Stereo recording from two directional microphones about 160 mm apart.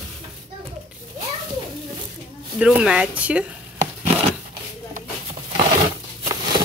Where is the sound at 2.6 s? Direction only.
5° right (ahead or behind).